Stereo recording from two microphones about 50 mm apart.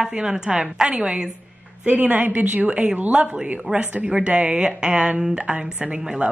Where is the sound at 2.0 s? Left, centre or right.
Right.